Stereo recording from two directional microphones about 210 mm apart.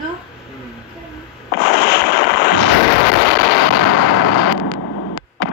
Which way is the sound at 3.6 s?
90° left.